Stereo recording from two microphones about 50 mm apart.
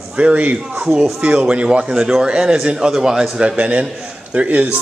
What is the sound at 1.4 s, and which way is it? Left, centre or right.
A man's voice, right.